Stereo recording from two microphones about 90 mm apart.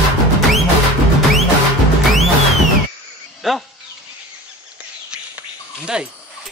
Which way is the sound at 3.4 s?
Centre (ahead or behind).